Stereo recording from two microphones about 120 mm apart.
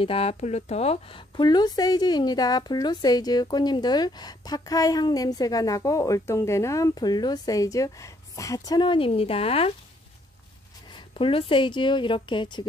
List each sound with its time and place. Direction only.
0.0 s speech: 55° left (ahead or behind); by 8.7 s 25° left (ahead or behind)
8.7 s speech: 45° left (ahead or behind)
11.1 s speech: 50° left (ahead or behind)